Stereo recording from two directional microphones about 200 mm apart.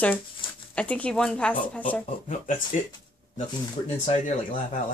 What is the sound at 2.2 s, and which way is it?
Speech, 35° left (ahead or behind).